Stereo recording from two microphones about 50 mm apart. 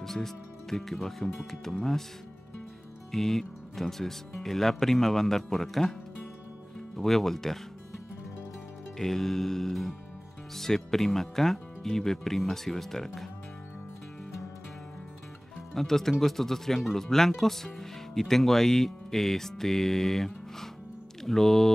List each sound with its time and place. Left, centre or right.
0.0 s speech: centre
3.1 s speech: centre
7.0 s speech: centre
8.9 s music: centre
10.5 s speech: centre
15.7 s speech: centre
21.2 s mantra: centre